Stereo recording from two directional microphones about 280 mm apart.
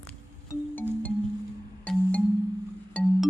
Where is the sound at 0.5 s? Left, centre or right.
Centre.